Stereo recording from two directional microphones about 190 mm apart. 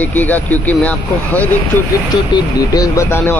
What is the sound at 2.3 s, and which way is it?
Speech, 20° left (ahead or behind).